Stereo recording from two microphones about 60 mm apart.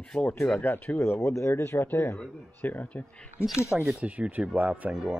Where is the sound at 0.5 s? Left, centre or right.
Left.